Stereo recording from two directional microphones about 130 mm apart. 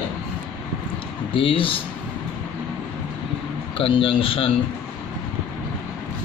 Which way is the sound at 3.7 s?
45° left (ahead or behind).